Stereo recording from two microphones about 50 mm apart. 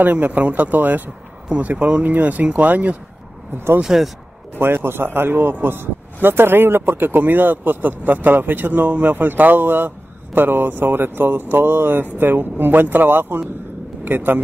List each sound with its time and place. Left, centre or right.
0.0 s speech: right
3.8 s speech: centre
4.6 s speech: right